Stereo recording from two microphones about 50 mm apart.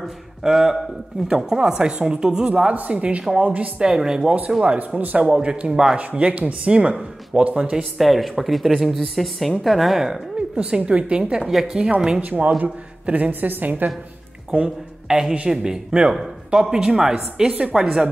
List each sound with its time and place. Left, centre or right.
0.0 s a man's voice: centre
4.7 s speech: right
5.2 s speech: centre
5.9 s speech: right
8.0 s speech: centre
10.3 s speech: centre
12.2 s speech: right
15.0 s a man's voice: centre